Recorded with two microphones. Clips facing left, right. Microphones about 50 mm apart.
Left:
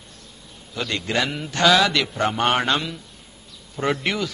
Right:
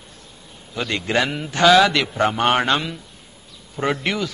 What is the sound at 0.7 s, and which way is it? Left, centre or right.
A man's voice, centre.